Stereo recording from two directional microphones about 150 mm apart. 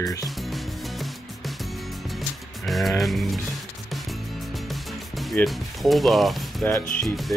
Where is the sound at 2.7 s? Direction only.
Centre (ahead or behind).